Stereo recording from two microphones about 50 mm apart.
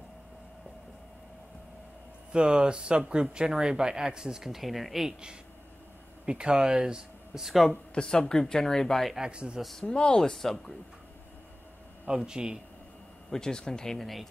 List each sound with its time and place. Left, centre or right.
2.3 s speech: centre
6.2 s speech: centre
7.9 s speech: centre
9.1 s speech: centre
9.6 s speech: centre
9.8 s speech: centre
12.3 s speech: centre
13.3 s speech: centre